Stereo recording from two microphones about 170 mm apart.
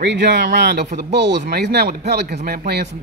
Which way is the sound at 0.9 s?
75° right (ahead or behind).